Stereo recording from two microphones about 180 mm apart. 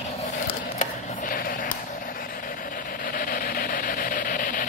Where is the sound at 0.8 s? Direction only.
50° left (ahead or behind).